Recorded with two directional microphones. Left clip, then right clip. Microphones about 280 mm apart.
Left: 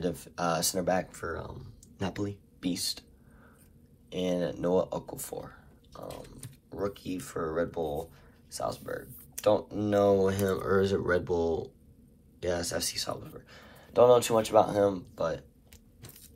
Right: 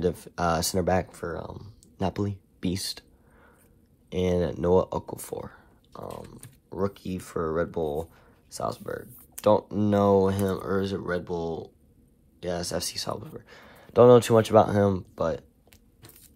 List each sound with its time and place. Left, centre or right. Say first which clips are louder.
0.0 s speech: right 5 dB; right
1.2 s speech: right 3 dB; centre; by 3.1 s right
4.1 s speech: right 5 dB; right
6.0 s speech: right 3 dB; centre
9.4 s speech: right 4 dB; right